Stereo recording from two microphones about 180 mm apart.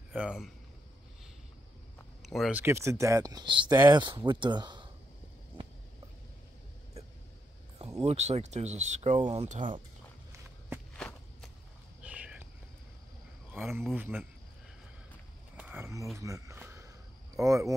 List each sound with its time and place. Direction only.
0.1 s a man's voice: 5° right (ahead or behind)
2.2 s speech: centre (ahead or behind)
2.6 s speech: 15° right (ahead or behind)
8.0 s speech: 35° right (ahead or behind)
11.0 s walk: 5° left (ahead or behind)
12.0 s a sound: 5° right (ahead or behind)
13.5 s a sound: centre (ahead or behind)
13.9 s speech: 10° right (ahead or behind)
15.5 s a sound: 10° right (ahead or behind)
17.4 s speech: 20° right (ahead or behind)